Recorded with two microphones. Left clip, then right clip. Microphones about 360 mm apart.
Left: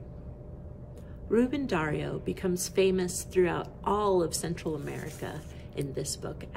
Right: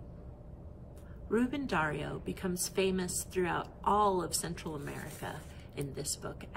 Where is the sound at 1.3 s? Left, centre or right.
Centre.